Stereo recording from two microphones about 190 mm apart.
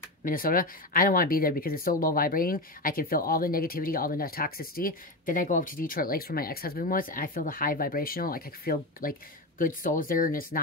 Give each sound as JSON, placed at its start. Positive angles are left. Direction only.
{"t": 0.2, "sound": "speech", "side_deg": 50}